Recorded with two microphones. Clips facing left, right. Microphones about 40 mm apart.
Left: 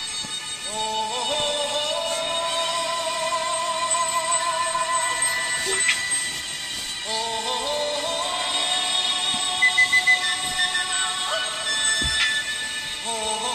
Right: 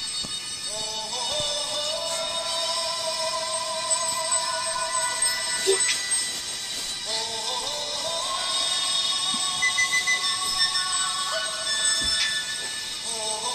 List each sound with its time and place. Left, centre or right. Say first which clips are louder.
0.7 s music: left 8 dB; left
7.1 s music: left 5 dB; left